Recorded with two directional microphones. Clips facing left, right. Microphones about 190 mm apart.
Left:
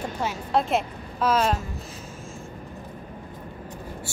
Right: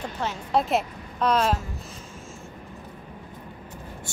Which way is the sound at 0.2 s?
10° left (ahead or behind).